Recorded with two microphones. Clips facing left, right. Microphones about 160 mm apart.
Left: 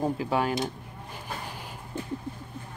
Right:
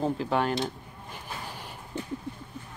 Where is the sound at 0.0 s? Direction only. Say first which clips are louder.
Even; 5° left (ahead or behind).